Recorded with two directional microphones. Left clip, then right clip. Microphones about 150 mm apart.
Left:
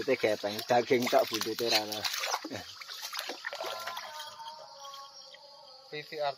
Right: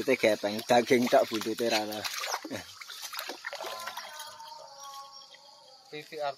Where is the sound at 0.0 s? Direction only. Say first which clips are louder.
Right 3 dB; 90° right.